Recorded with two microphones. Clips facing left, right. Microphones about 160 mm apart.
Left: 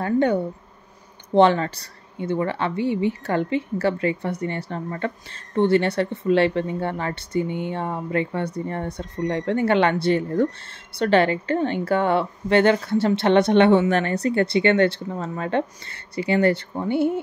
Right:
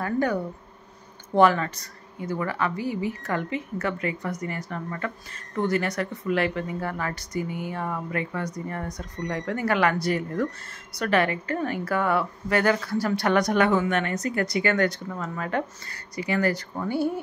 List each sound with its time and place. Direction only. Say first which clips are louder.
0.0 s speech: left 5 dB; 25° left (ahead or behind)